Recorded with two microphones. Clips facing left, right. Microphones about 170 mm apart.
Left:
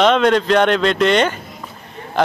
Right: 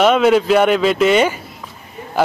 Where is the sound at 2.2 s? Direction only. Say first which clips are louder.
Right 1 dB; 5° right (ahead or behind).